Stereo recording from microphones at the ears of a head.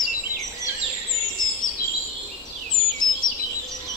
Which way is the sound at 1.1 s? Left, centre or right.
Left.